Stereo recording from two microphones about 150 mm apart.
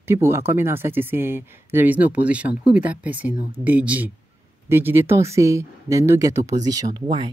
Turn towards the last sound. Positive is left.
turn(degrees=-30)  # may be behind; listen again after turning